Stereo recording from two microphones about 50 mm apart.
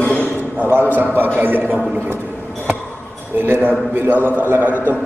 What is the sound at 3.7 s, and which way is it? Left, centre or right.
Speech, right.